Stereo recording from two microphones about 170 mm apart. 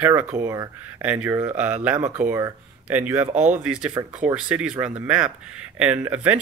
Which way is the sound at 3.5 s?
5° right (ahead or behind).